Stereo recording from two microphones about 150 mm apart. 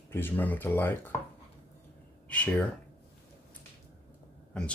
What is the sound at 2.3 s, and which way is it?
Speech, 10° left (ahead or behind).